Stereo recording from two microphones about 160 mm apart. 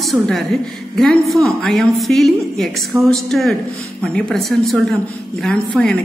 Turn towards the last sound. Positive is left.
turn(degrees=5)  # may be behind; listen again after turning